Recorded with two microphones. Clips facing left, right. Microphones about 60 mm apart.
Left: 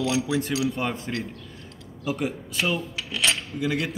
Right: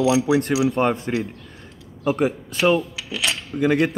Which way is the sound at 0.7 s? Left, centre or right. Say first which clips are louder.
Right 8 dB; right.